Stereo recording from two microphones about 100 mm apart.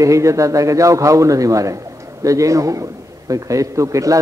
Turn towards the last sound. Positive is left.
turn(degrees=-30)  # may be behind; listen again after turning